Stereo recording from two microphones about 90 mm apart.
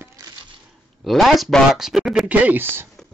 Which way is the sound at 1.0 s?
Centre (ahead or behind).